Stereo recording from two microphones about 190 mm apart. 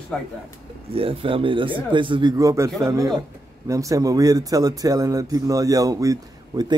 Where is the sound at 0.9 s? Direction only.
30° right (ahead or behind).